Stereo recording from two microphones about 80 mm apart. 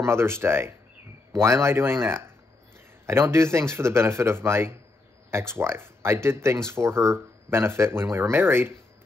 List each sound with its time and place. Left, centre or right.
0.0 s speech: right